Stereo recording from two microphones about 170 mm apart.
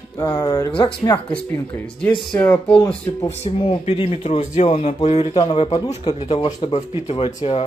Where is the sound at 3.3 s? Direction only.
40° left (ahead or behind).